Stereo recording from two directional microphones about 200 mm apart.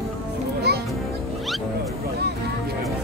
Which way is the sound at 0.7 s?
55° right (ahead or behind).